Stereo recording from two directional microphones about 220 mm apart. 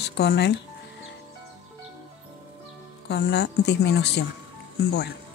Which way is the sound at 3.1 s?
50° left (ahead or behind).